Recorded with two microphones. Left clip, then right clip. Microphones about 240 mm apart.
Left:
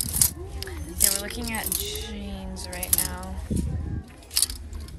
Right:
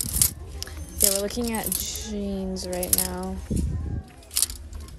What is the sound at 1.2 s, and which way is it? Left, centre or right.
Speech, right.